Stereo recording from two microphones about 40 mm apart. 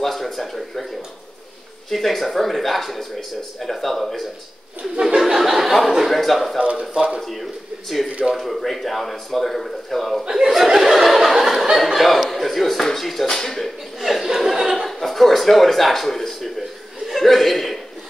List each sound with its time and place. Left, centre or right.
0.0 s speech: centre
1.9 s speech: centre
5.0 s speech: centre
6.6 s speech: right
7.2 s speech: centre
10.3 s laughter: centre
11.7 s a man's voice: centre
13.9 s chuckle: centre
14.9 s a sound: centre
17.1 s chuckle: centre